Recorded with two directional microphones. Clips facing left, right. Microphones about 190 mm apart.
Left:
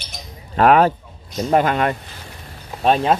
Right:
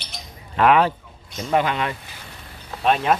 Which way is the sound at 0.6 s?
45° left (ahead or behind).